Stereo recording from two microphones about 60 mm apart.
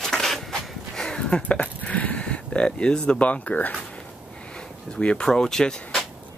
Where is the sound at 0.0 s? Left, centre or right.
Centre; by 3.7 s left.